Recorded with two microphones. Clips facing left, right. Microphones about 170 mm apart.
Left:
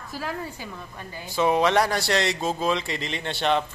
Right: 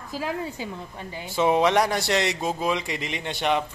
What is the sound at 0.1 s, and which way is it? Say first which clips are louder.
A woman's voice: right 3 dB; 15° right (ahead or behind).